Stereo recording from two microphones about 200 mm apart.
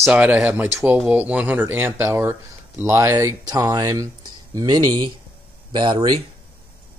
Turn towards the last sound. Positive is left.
turn(degrees=-20)  # may be behind; listen again after turning